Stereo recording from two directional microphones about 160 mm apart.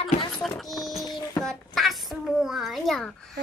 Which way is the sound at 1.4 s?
Centre (ahead or behind).